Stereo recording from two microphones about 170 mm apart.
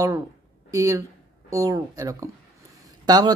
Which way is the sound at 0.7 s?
20° right (ahead or behind).